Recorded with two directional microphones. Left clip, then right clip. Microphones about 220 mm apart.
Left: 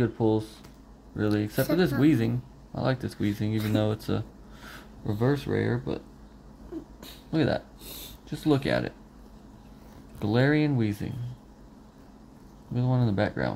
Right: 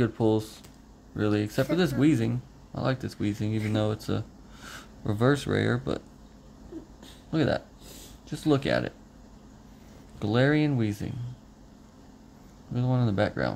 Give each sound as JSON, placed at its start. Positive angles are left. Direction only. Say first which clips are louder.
{"t": 0.0, "sound": "speech", "louder": "even", "side_deg": -15}
{"t": 5.0, "sound": "speech", "louder": "right 2 dB", "side_deg": -25}
{"t": 7.2, "sound": "speech", "louder": "even", "side_deg": -10}
{"t": 10.1, "sound": "speech", "louder": "even", "side_deg": -10}
{"t": 12.7, "sound": "speech", "louder": "even", "side_deg": -10}